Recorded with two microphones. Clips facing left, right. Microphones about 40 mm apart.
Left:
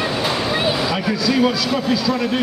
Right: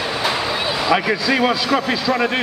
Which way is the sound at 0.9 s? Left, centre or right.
Right.